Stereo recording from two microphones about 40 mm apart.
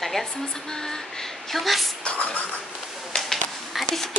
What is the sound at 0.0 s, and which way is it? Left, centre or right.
Speech, centre.